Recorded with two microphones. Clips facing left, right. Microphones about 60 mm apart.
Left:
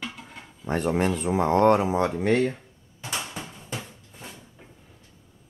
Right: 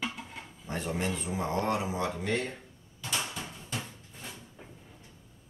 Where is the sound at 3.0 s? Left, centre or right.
Left.